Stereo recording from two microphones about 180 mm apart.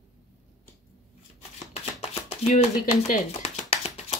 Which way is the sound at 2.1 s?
35° left (ahead or behind).